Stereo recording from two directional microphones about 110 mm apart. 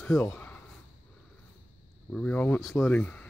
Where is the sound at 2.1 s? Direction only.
15° left (ahead or behind).